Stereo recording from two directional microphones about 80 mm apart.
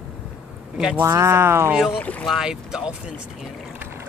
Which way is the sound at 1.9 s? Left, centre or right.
Centre.